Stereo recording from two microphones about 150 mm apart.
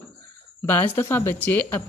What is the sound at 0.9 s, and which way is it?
Speech, 15° left (ahead or behind).